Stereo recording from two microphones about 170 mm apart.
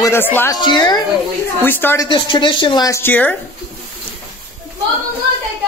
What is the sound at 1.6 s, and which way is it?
Speech, 10° left (ahead or behind).